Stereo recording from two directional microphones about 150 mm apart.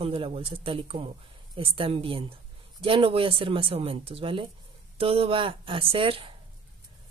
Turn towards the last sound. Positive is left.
turn(degrees=-35)  # may be behind; listen again after turning